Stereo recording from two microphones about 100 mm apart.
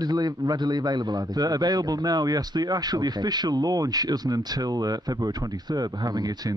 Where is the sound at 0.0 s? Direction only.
40° right (ahead or behind).